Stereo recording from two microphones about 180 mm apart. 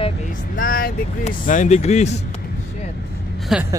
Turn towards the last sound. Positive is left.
turn(degrees=-5)  # may be behind; listen again after turning